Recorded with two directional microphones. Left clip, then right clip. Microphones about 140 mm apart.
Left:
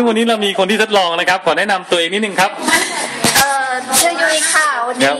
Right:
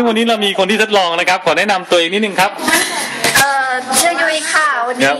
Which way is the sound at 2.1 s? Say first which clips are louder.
Right 1 dB; 20° right (ahead or behind).